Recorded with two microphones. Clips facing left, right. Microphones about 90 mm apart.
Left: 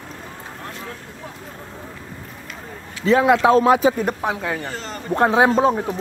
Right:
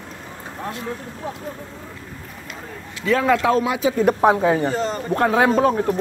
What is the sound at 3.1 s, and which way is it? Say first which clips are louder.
Speech: left 3 dB; 20° left (ahead or behind).